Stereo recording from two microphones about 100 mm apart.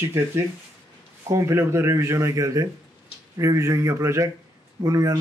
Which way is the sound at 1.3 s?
30° right (ahead or behind).